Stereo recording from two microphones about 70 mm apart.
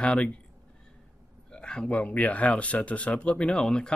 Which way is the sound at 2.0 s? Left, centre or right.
Left.